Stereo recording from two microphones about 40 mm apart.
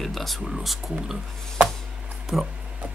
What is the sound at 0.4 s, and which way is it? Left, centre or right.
Speech, centre.